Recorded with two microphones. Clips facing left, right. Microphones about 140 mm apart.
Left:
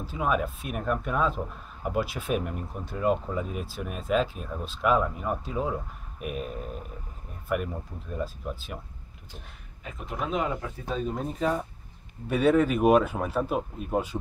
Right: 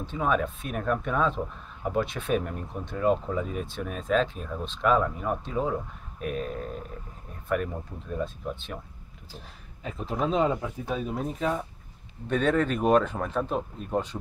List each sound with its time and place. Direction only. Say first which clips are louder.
0.0 s speech: right 1 dB; 5° left (ahead or behind)
9.8 s speech: right 4 dB; 30° right (ahead or behind)
10.9 s speech: left 1 dB; 5° right (ahead or behind)